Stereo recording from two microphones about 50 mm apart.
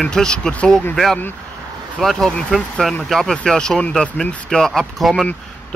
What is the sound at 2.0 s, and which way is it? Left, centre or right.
Speech, centre.